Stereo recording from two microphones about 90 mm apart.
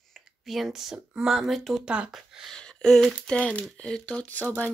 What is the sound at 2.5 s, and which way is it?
Speech, 10° left (ahead or behind).